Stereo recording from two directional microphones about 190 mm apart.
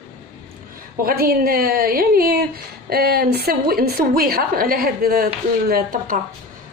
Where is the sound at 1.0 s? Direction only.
50° right (ahead or behind).